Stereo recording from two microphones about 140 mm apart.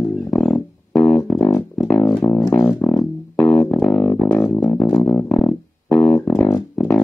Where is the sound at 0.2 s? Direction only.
10° left (ahead or behind).